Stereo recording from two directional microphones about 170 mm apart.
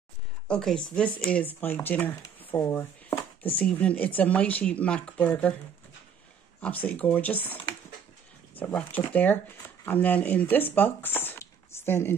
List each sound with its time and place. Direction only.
0.5 s speech: 5° left (ahead or behind)
6.6 s speech: 10° left (ahead or behind)